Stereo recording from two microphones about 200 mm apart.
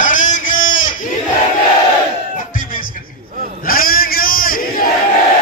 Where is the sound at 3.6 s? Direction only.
45° left (ahead or behind).